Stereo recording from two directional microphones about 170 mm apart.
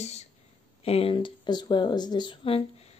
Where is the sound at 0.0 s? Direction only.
40° left (ahead or behind).